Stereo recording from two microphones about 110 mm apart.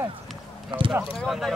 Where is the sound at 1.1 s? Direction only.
5° left (ahead or behind).